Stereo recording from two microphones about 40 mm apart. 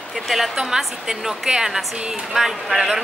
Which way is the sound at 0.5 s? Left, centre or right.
Centre.